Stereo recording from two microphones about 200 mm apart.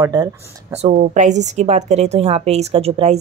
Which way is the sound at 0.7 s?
35° right (ahead or behind).